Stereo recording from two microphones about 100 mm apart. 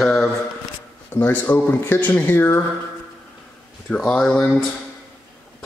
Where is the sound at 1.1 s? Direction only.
20° left (ahead or behind).